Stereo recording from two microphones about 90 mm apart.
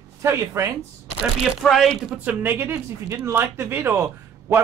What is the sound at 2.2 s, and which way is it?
A man's voice, 20° right (ahead or behind).